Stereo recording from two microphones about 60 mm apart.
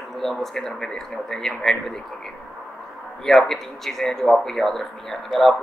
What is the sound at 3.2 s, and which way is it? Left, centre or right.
Speech, centre.